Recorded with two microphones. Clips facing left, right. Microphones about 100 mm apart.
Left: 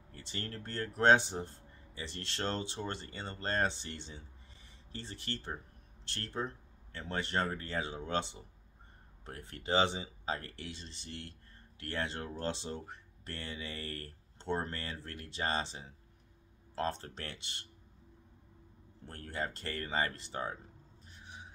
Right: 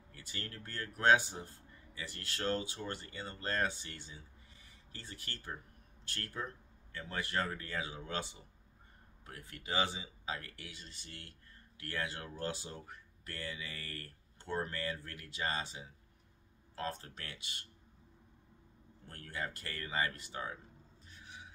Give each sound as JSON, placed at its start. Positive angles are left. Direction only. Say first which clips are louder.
{"t": 0.1, "sound": "speech", "louder": "left 4 dB", "side_deg": 30}
{"t": 19.0, "sound": "speech", "louder": "left 3 dB", "side_deg": 30}
{"t": 21.2, "sound": "a sound", "louder": "left 2 dB", "side_deg": 25}